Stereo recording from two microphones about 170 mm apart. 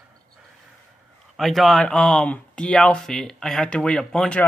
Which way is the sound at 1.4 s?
Centre (ahead or behind).